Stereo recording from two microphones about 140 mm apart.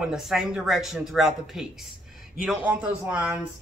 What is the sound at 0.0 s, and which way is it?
Speech, 5° right (ahead or behind).